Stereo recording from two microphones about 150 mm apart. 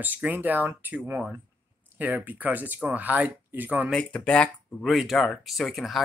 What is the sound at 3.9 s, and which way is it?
Speech, 5° left (ahead or behind).